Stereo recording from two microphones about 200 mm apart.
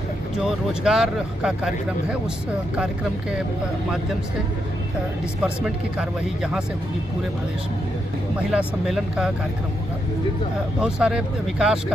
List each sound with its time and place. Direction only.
0.4 s speech: centre (ahead or behind)
5.4 s speech: 5° right (ahead or behind)
8.5 s speech: centre (ahead or behind)
10.8 s speech: 5° right (ahead or behind)